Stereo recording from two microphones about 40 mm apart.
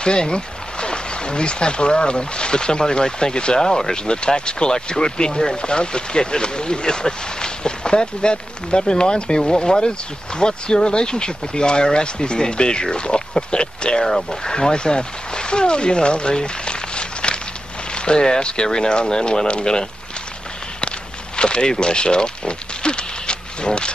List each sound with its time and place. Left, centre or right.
0.0 s speech: left
14.0 s speech: centre
14.5 s speech: left
21.4 s speech: left